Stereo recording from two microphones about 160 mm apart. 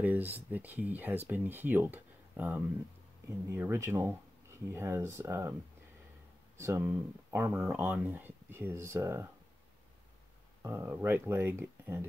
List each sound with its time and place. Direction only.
0.0 s speech: 10° right (ahead or behind)
6.6 s speech: 15° right (ahead or behind)
10.6 s speech: 15° right (ahead or behind)